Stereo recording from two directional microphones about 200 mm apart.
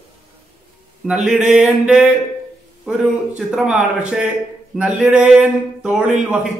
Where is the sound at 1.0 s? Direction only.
5° right (ahead or behind).